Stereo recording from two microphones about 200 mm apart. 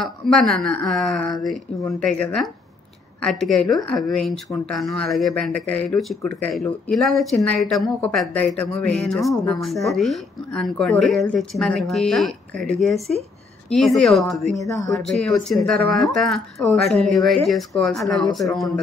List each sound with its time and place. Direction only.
0.0 s speech: centre (ahead or behind)
1.8 s speech: 15° left (ahead or behind)
2.0 s speech: 5° left (ahead or behind)
14.7 s speech: 15° left (ahead or behind)
15.0 s speech: centre (ahead or behind)